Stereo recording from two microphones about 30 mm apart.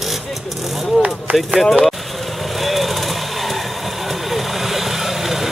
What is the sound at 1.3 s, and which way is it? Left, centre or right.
Speech, right.